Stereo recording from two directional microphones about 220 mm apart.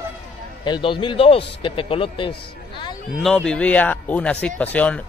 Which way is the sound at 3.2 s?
Centre (ahead or behind).